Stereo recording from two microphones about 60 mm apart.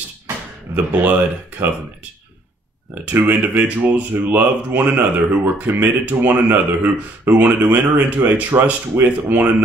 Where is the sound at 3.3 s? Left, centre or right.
Right.